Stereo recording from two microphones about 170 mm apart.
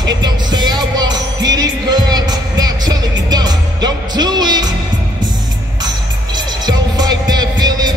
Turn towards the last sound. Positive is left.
turn(degrees=-25)  # may be behind; listen again after turning